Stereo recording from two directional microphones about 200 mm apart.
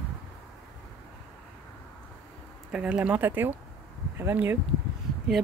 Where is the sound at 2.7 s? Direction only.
5° right (ahead or behind).